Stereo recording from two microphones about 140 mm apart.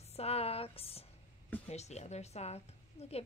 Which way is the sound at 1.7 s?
50° left (ahead or behind).